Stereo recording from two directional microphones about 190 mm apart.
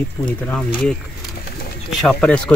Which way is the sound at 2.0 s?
5° left (ahead or behind).